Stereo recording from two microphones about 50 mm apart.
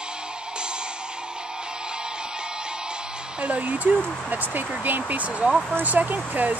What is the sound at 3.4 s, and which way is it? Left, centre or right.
Speech, right.